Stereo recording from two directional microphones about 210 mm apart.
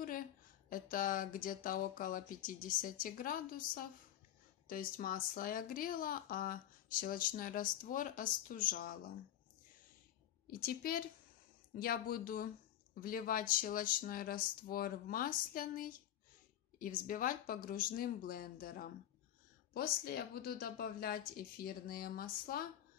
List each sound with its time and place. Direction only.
0.7 s speech: 40° left (ahead or behind)
10.4 s speech: 45° left (ahead or behind)